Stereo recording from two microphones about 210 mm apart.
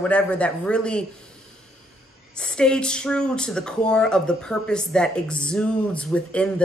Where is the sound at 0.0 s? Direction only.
5° left (ahead or behind).